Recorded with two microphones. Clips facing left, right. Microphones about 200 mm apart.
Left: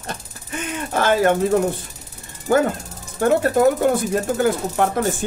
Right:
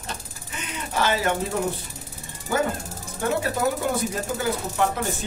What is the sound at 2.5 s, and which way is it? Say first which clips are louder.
Speech: left 7 dB; 50° left (ahead or behind).